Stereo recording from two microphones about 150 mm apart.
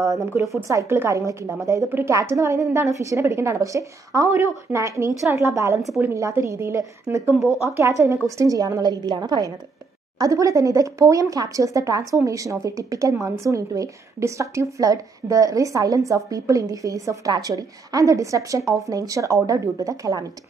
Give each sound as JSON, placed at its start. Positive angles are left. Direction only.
{"t": 0.0, "sound": "speech", "side_deg": -20}